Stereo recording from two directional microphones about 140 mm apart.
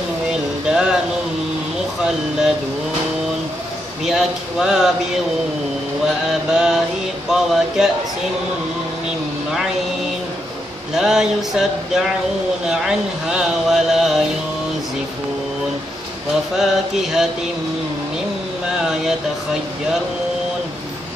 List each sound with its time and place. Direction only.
0.3 s a sound: 5° right (ahead or behind)
4.0 s speech: 5° right (ahead or behind)
6.5 s speech: 5° right (ahead or behind)
11.0 s speech: 5° right (ahead or behind)
16.5 s speech: 5° right (ahead or behind)
18.8 s a sound: 5° right (ahead or behind)